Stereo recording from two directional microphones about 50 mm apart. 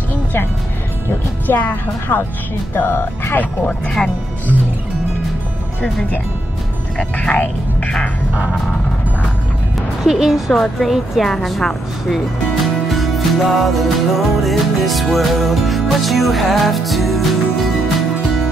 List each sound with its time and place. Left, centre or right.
0.1 s music: left
1.5 s a woman's voice: left
2.7 s speech: left
7.2 s speech: left
10.0 s a woman's voice: centre
10.5 s a woman's voice: centre
12.8 s music: centre